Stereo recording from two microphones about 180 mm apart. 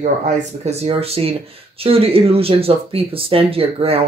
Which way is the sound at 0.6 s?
35° right (ahead or behind).